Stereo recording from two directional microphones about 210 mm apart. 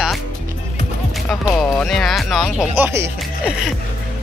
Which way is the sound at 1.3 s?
Centre (ahead or behind).